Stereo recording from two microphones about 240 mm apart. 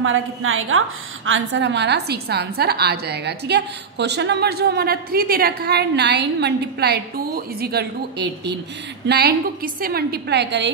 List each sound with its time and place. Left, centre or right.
0.0 s a woman's voice: right